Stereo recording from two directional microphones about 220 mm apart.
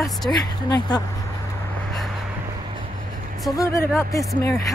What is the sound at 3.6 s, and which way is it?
Speech, 15° left (ahead or behind).